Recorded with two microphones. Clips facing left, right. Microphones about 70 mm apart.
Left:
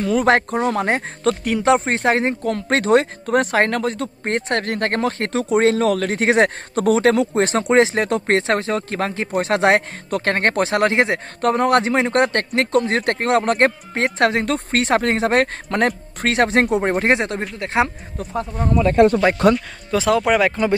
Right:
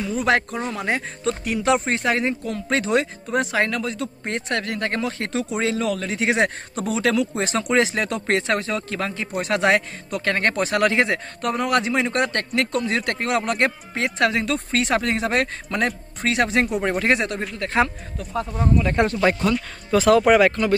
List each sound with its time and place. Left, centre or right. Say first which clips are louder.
0.2 s speech: left 2 dB; left
7.6 s speech: left 3 dB; left
11.4 s speech: left 5 dB; left
19.5 s speech: even; centre